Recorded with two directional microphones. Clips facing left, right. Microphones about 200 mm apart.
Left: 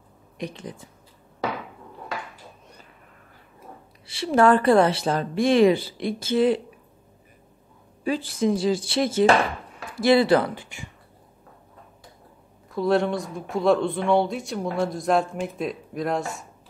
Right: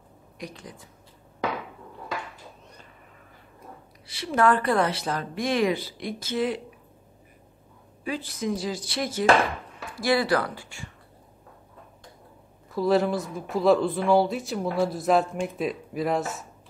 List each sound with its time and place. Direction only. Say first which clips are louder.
0.4 s speech: left 6 dB; 25° left (ahead or behind)
4.1 s speech: left 4 dB; 30° left (ahead or behind)
8.0 s speech: left 6 dB; 30° left (ahead or behind)
12.7 s speech: left 1 dB; centre (ahead or behind)